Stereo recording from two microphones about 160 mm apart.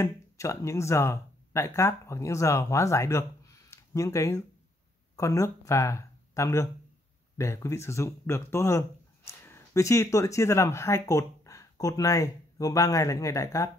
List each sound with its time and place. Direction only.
0.0 s speech: 20° left (ahead or behind)